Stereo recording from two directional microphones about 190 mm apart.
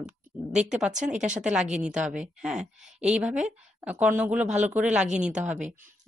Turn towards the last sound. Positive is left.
turn(degrees=-10)  # may be behind; listen again after turning